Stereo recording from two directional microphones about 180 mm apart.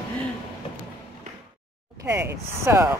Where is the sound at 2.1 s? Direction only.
15° right (ahead or behind).